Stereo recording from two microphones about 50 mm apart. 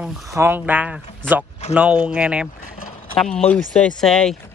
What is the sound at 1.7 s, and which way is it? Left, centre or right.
Speech, right.